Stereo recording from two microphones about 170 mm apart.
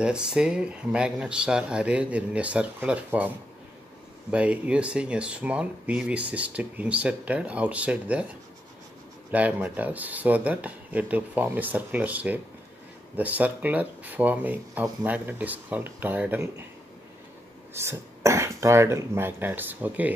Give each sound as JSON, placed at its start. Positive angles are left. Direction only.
{"t": 0.0, "sound": "speech", "side_deg": -5}
{"t": 9.3, "sound": "speech", "side_deg": -10}
{"t": 17.7, "sound": "speech", "side_deg": -15}